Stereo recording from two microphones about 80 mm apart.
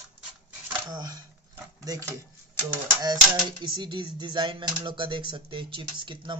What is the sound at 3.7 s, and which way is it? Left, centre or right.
Speech, right.